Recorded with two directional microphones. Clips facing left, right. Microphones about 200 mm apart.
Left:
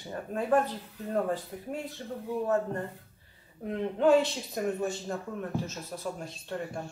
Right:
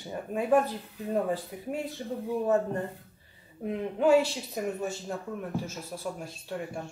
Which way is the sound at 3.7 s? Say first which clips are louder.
Even; 10° right (ahead or behind).